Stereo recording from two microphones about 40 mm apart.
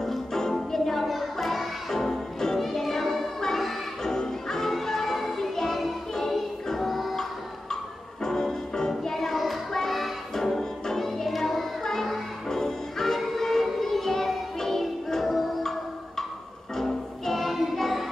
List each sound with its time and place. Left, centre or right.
0.0 s music: centre
8.2 s music: centre